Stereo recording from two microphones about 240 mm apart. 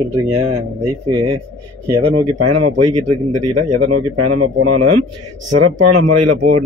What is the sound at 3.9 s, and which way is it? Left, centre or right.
Speech, right.